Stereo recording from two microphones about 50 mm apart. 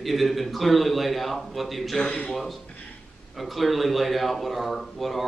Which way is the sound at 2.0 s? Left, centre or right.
Left.